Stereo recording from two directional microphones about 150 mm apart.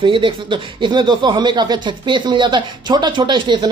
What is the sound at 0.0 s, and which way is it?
Speech, 35° right (ahead or behind).